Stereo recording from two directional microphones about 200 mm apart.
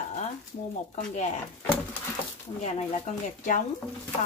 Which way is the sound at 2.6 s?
35° left (ahead or behind).